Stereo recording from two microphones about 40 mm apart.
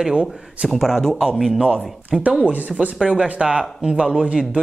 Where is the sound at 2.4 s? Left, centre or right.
Right.